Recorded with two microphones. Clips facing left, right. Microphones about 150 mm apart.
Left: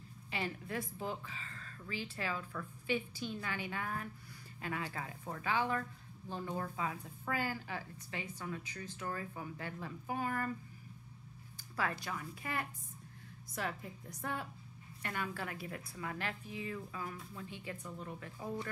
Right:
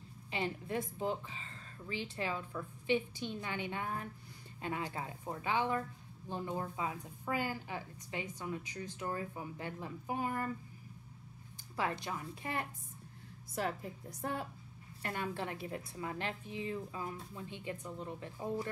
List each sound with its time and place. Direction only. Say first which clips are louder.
0.3 s speech: right 3 dB; 20° right (ahead or behind)
11.5 s a woman's voice: right 1 dB; 25° right (ahead or behind)